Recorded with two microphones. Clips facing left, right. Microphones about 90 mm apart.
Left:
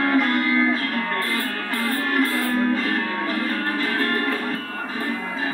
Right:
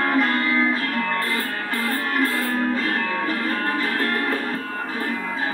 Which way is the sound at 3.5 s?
45° right (ahead or behind).